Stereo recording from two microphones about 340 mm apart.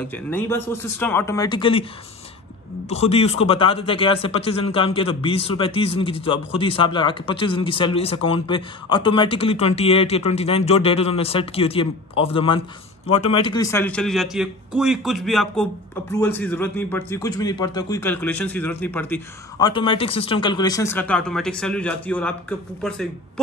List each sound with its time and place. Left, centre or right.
0.1 s speech: centre
2.9 s a man's voice: centre